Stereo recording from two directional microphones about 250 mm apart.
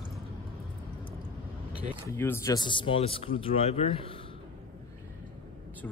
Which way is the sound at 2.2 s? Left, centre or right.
Centre.